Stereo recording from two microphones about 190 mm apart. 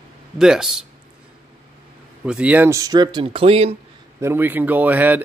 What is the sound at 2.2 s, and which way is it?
Speech, 5° right (ahead or behind).